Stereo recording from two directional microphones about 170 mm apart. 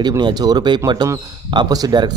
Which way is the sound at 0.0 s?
25° right (ahead or behind).